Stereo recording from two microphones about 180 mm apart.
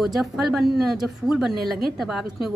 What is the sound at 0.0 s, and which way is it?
A woman's voice, centre (ahead or behind).